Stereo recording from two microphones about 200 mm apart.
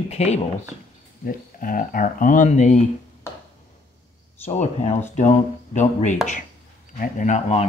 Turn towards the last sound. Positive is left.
turn(degrees=35)  # may be behind; listen again after turning